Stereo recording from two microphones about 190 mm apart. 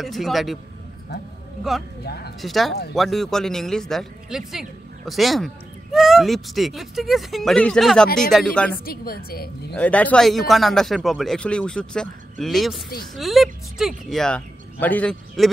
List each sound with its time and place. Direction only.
0.0 s speech: centre (ahead or behind)
2.0 s speech: 55° left (ahead or behind)
2.4 s speech: centre (ahead or behind)
8.8 s a woman's voice: 50° left (ahead or behind)
9.8 s speech: 10° left (ahead or behind)